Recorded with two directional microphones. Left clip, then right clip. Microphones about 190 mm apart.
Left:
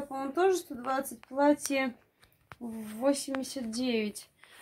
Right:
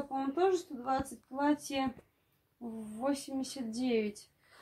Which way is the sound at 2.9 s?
50° left (ahead or behind).